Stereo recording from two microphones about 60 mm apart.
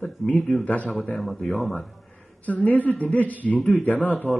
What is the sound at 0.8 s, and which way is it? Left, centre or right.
Speech, centre.